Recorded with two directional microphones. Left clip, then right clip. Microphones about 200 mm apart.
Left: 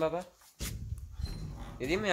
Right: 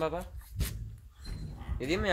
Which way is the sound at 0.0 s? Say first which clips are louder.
Left 1 dB; 25° right (ahead or behind).